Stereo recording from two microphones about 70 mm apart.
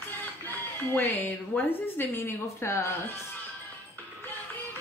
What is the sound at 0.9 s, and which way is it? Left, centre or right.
A woman's voice, left.